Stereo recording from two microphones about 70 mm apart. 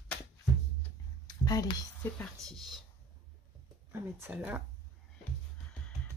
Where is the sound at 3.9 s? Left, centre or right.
Right.